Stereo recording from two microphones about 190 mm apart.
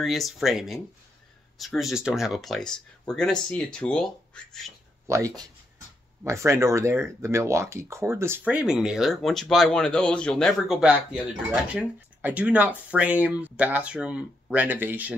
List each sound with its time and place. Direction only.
0.0 s speech: centre (ahead or behind)
1.8 s speech: centre (ahead or behind)
5.0 s speech: 15° right (ahead or behind)